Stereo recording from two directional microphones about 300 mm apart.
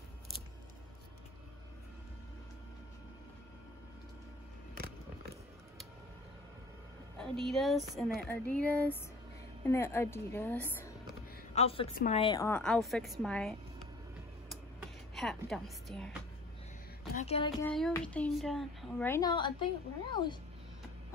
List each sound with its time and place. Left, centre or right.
7.2 s a woman's voice: centre
11.5 s a woman's voice: centre
15.1 s a woman's voice: centre
17.1 s speech: left
17.6 s a woman's voice: centre